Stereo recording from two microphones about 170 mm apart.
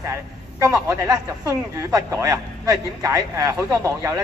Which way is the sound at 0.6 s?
20° right (ahead or behind).